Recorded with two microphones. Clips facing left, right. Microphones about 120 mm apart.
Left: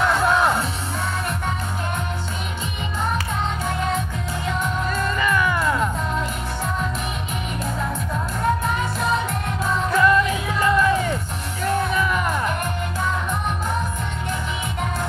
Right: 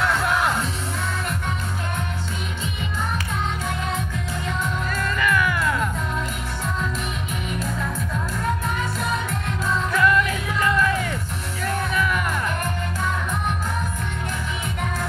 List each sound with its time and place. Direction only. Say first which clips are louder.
0.0 s music: left 3 dB; 25° left (ahead or behind)
4.8 s music: even; 25° left (ahead or behind)
9.9 s music: left 3 dB; 25° left (ahead or behind)